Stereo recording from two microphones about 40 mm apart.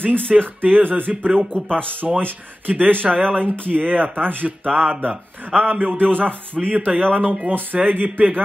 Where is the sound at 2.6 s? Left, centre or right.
Right.